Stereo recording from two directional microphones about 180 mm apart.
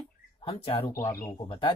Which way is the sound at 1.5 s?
30° left (ahead or behind).